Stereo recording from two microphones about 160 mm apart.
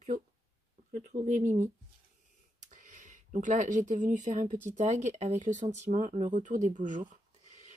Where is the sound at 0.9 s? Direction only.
50° right (ahead or behind).